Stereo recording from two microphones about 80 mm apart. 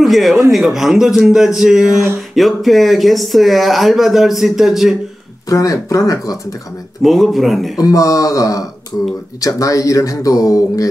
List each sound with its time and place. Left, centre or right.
0.0 s speech: centre
5.5 s speech: left
7.0 s speech: centre
7.7 s speech: left